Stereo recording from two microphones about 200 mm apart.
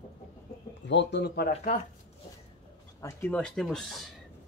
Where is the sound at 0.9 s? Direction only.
60° left (ahead or behind).